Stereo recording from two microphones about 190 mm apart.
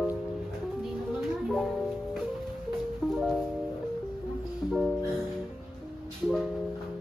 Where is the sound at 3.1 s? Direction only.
Centre (ahead or behind).